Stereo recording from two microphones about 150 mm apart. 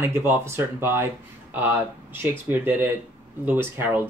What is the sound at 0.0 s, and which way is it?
Speech, 15° right (ahead or behind).